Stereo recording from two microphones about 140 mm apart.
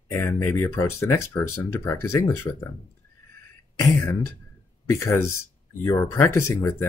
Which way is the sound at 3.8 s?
20° left (ahead or behind).